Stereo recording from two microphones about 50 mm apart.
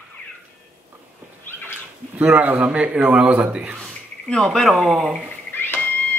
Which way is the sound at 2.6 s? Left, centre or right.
Right.